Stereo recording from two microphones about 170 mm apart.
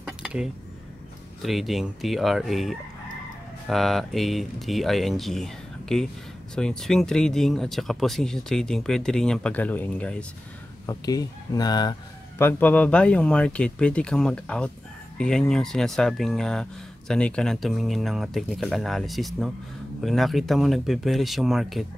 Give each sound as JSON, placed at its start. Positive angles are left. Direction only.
{"t": 0.0, "sound": "a sound", "side_deg": -5}
{"t": 1.4, "sound": "speech", "side_deg": 0}
{"t": 10.9, "sound": "speech", "side_deg": 20}
{"t": 12.4, "sound": "speech", "side_deg": 10}